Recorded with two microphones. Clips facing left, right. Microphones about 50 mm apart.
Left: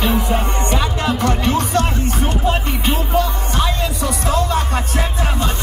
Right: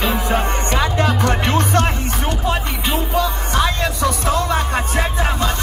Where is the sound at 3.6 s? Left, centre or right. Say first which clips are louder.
Right 2 dB; right.